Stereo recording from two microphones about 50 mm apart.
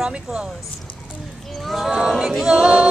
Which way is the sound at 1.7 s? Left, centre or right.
Centre.